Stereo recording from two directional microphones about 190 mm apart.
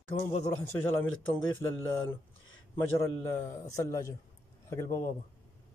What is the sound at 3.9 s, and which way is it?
Speech, 15° left (ahead or behind).